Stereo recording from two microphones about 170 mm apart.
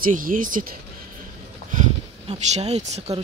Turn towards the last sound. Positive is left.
turn(degrees=-40)  # may be behind; listen again after turning